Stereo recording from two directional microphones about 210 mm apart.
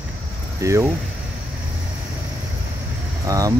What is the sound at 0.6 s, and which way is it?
Speech, 15° right (ahead or behind).